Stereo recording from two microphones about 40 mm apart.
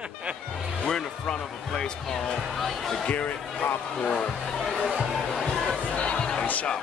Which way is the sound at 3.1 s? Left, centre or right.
Left.